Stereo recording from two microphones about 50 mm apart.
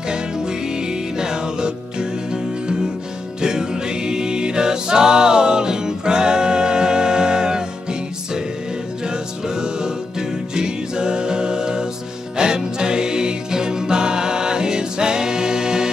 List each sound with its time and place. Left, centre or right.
0.1 s music: centre